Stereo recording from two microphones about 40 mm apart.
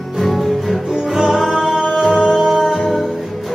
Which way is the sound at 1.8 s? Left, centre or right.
Centre.